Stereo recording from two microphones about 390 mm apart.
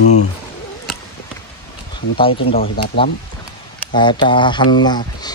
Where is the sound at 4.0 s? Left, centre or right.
Centre.